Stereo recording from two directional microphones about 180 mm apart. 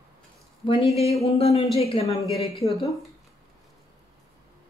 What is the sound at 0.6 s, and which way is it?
Speech, 30° left (ahead or behind).